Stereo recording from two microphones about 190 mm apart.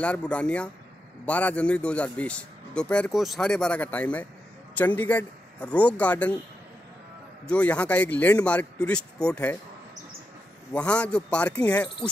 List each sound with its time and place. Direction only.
0.0 s a man's voice: 5° left (ahead or behind)
7.4 s speech: 5° left (ahead or behind)
10.7 s a man's voice: 5° left (ahead or behind)